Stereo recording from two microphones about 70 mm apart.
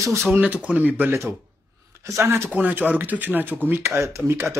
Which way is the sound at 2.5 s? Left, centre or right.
Right.